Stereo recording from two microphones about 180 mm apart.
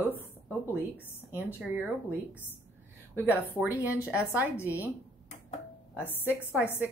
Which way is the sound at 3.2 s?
10° right (ahead or behind).